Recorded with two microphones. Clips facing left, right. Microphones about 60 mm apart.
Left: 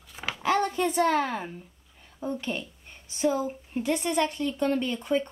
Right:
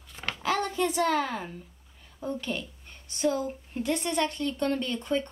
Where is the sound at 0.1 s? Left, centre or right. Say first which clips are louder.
Left 3 dB; centre.